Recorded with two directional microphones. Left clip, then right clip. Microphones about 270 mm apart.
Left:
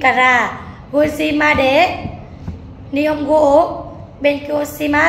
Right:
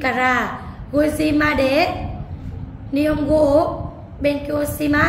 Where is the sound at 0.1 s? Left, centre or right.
Centre.